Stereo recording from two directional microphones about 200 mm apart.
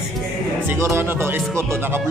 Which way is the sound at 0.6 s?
10° right (ahead or behind).